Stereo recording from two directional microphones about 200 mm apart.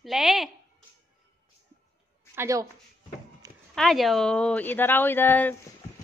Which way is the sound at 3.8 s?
Centre (ahead or behind).